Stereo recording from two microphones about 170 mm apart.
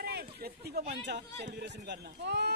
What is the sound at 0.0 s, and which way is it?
Speech, 70° right (ahead or behind).